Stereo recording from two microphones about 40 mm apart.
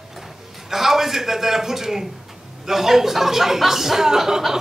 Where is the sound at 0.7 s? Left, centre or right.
Centre.